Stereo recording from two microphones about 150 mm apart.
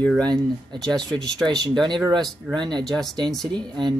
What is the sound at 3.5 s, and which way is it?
Speech, 30° right (ahead or behind).